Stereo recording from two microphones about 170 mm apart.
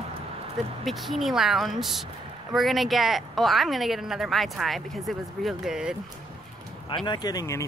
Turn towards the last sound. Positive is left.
turn(degrees=20)  # may be behind; listen again after turning